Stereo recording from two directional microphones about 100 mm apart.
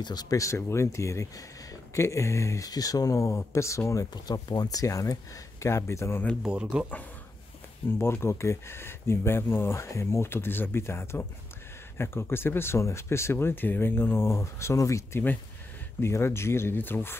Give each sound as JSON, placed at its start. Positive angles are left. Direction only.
{"t": 0.0, "sound": "speech", "side_deg": 40}
{"t": 4.1, "sound": "speech", "side_deg": 45}
{"t": 6.4, "sound": "speech", "side_deg": -10}
{"t": 8.0, "sound": "speech", "side_deg": 25}